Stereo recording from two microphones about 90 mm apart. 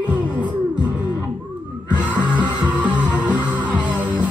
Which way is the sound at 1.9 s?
15° right (ahead or behind).